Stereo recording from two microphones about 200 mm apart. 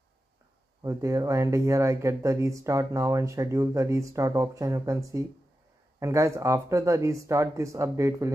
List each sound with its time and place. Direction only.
0.8 s speech: 15° right (ahead or behind)